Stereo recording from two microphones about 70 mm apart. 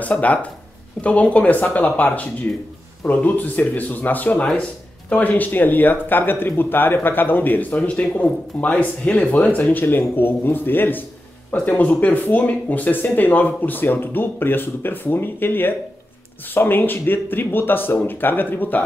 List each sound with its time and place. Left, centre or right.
0.0 s speech: left